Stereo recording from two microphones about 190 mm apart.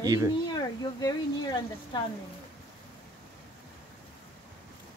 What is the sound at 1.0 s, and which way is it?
Speech, 25° left (ahead or behind).